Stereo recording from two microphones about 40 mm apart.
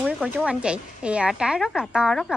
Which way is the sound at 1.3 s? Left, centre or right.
Centre.